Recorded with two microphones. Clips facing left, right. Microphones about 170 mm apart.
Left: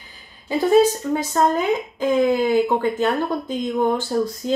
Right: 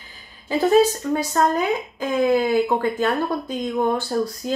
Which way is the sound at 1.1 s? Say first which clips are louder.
Right 1 dB; 20° left (ahead or behind).